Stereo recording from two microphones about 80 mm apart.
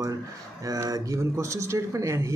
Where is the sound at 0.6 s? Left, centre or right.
Right.